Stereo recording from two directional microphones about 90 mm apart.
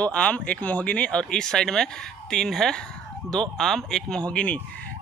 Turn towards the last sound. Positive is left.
turn(degrees=15)  # may be behind; listen again after turning